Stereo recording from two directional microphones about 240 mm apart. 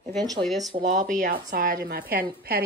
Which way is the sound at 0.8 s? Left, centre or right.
Right.